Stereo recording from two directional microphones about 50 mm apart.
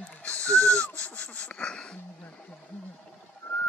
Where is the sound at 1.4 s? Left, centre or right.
Centre.